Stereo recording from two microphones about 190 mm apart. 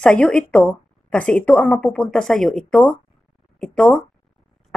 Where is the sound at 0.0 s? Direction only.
5° left (ahead or behind).